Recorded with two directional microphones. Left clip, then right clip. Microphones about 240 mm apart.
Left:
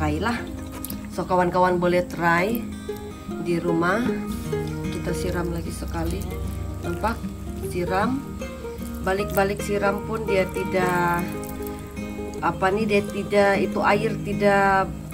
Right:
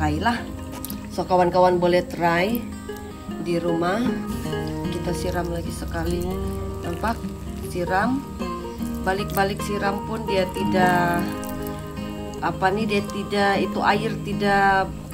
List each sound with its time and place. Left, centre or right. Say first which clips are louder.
0.0 s speech: right 2 dB; centre
7.7 s speech: right 2 dB; centre
12.4 s speech: even; centre